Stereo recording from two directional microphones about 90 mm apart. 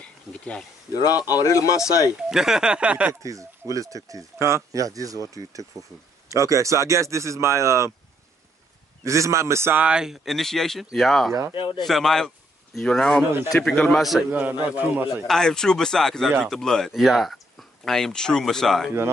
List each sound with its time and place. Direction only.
0.0 s speech: 10° left (ahead or behind)
1.2 s speech: 40° left (ahead or behind)
2.2 s a man's voice: 5° right (ahead or behind)
3.1 s speech: 40° right (ahead or behind)
9.0 s speech: 35° right (ahead or behind)
9.8 s a man's voice: 10° right (ahead or behind)
10.2 s speech: 5° left (ahead or behind)
11.5 s speech: 70° left (ahead or behind)
11.8 s speech: 5° left (ahead or behind)
14.3 s a man's voice: 15° right (ahead or behind)
15.2 s speech: 5° left (ahead or behind)